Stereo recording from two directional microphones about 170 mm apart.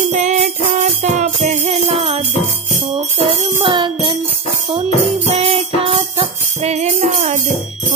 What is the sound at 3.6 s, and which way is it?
Music, 30° right (ahead or behind).